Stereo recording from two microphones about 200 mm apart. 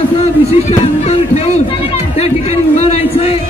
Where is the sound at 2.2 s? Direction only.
30° left (ahead or behind).